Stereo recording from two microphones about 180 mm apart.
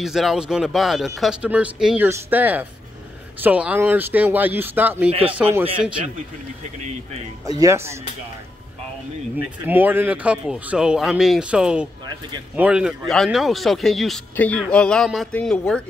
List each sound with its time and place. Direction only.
0.0 s speech: centre (ahead or behind)
5.1 s a man's voice: 30° right (ahead or behind)
7.4 s speech: 20° right (ahead or behind)
9.7 s speech: 10° right (ahead or behind); by 15.8 s 5° left (ahead or behind)